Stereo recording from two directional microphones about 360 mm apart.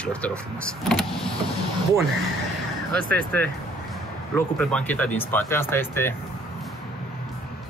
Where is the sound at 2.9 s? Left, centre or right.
Centre.